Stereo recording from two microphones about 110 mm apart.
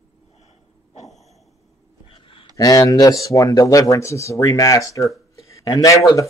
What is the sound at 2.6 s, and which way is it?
Speech, 35° left (ahead or behind).